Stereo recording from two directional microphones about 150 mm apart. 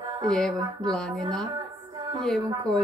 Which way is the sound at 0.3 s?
5° left (ahead or behind).